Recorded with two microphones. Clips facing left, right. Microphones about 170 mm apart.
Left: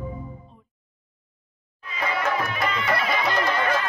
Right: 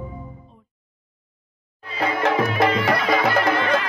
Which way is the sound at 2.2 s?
85° right.